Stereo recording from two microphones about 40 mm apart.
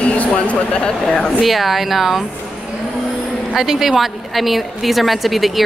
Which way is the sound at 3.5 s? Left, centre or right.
Centre.